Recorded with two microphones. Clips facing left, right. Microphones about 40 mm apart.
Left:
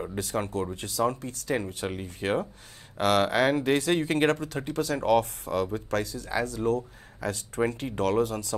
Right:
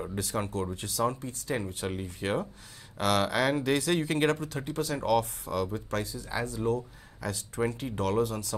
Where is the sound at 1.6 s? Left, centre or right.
Left.